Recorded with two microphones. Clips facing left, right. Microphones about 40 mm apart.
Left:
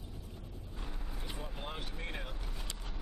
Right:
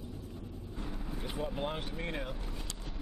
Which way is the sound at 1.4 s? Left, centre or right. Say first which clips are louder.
Right 9 dB; centre.